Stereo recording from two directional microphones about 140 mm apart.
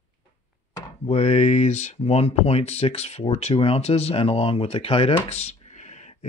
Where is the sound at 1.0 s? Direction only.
50° left (ahead or behind).